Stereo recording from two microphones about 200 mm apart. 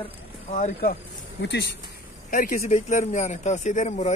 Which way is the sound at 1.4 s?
55° left (ahead or behind).